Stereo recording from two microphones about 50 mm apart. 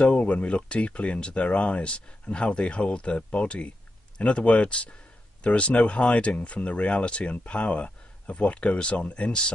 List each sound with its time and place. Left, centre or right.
0.0 s speech: left